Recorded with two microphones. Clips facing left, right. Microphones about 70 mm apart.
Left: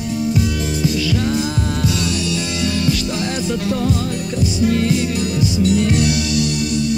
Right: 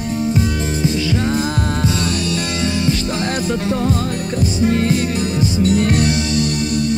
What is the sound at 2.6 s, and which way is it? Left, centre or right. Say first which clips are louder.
Music: even; right.